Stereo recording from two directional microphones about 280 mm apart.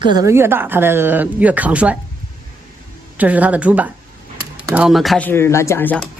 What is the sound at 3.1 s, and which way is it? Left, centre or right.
A woman's voice, centre.